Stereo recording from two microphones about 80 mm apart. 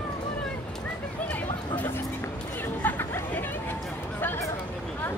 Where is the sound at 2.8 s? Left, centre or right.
Left.